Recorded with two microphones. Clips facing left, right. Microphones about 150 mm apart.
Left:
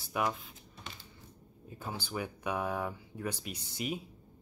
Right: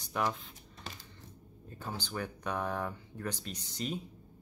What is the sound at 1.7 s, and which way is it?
Speech, 10° left (ahead or behind).